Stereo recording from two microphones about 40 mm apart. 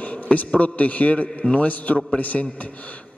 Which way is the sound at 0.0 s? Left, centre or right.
Left.